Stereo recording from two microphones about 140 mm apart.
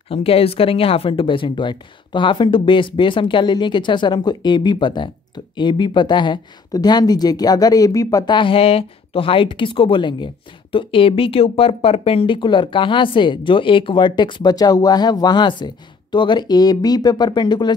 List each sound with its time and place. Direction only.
0.1 s speech: 45° left (ahead or behind)